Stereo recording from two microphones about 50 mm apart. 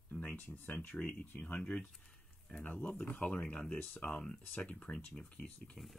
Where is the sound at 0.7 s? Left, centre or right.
Left.